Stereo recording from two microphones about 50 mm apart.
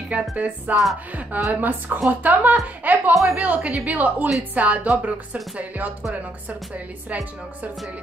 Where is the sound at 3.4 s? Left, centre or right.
Right.